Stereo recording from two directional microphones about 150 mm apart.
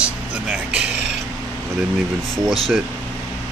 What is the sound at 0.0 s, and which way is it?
Music, 10° right (ahead or behind).